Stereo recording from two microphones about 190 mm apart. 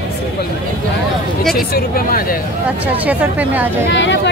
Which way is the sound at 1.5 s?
50° left (ahead or behind).